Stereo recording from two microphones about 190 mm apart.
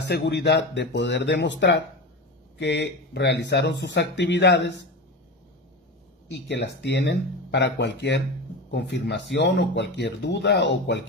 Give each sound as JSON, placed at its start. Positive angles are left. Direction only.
{"t": 0.0, "sound": "speech", "side_deg": 60}
{"t": 6.2, "sound": "speech", "side_deg": 60}